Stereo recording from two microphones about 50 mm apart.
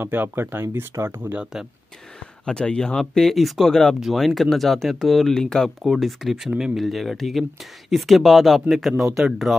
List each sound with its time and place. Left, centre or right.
0.0 s speech: right
1.3 s speech: centre
2.4 s speech: centre
3.0 s speech: centre
5.9 s speech: centre